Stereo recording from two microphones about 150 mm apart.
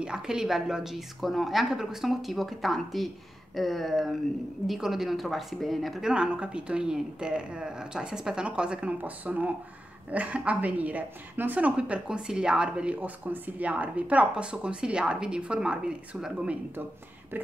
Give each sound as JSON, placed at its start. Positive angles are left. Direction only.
{"t": 0.0, "sound": "a woman's voice", "side_deg": -5}